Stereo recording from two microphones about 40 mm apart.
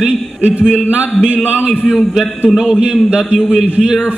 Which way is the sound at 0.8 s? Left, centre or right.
Right.